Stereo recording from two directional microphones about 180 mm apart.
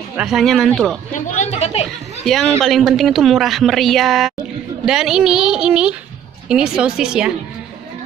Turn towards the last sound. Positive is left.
turn(degrees=-5)  # may be behind; listen again after turning